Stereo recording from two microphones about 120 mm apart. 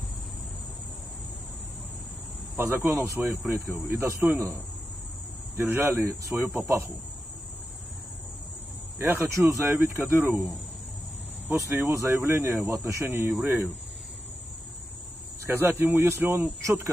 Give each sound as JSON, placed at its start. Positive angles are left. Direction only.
{"t": 2.5, "sound": "speech", "side_deg": -20}
{"t": 5.6, "sound": "speech", "side_deg": -20}
{"t": 9.0, "sound": "speech", "side_deg": -20}
{"t": 12.0, "sound": "speech", "side_deg": -20}
{"t": 15.4, "sound": "speech", "side_deg": -20}